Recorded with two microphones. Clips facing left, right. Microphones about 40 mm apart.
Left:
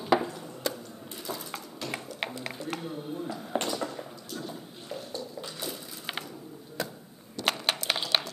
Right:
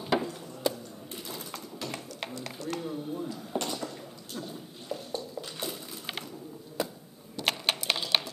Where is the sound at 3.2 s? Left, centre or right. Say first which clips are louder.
Left 2 dB; left.